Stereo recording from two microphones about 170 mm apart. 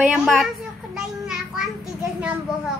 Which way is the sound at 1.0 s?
Centre (ahead or behind).